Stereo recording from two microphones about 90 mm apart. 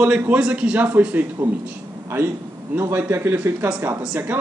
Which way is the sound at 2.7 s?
30° right (ahead or behind).